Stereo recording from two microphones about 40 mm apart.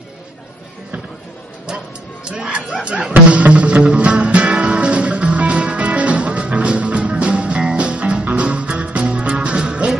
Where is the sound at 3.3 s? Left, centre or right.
Right.